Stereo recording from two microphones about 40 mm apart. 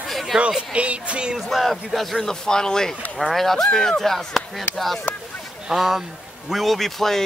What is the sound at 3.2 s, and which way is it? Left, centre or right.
Speech, centre.